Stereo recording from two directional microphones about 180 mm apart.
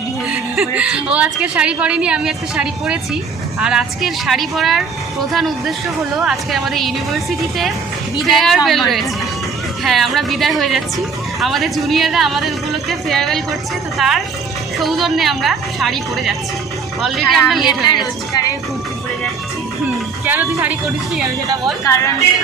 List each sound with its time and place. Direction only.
0.3 s speech: 5° right (ahead or behind)
18.3 s speech: 20° left (ahead or behind)
20.2 s speech: 10° right (ahead or behind)
21.8 s speech: 15° left (ahead or behind)